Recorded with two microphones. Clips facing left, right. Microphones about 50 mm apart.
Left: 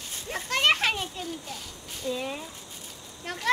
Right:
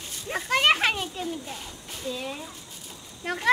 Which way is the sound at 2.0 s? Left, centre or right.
Centre.